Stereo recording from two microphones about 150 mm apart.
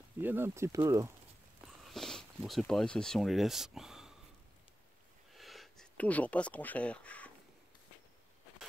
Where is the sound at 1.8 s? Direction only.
Centre (ahead or behind).